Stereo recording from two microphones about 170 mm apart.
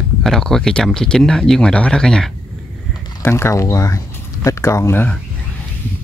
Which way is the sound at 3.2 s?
15° left (ahead or behind).